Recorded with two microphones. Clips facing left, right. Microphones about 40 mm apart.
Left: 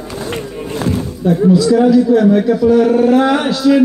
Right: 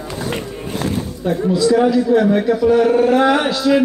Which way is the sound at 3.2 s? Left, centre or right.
Centre.